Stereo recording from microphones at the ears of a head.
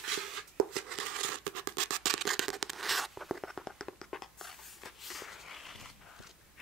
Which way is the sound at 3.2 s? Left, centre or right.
Centre.